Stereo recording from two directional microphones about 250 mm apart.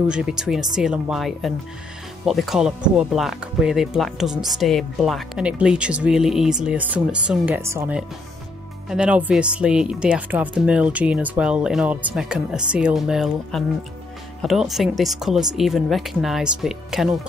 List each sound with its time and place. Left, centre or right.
0.1 s speech: centre